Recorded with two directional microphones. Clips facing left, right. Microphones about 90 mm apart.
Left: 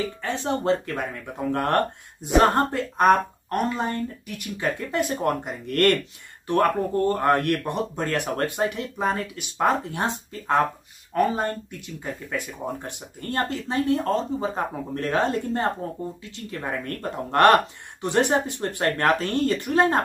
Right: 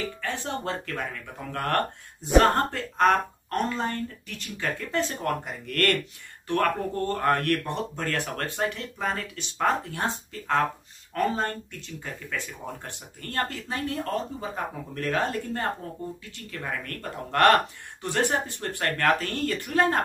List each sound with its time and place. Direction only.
0.0 s speech: 20° left (ahead or behind)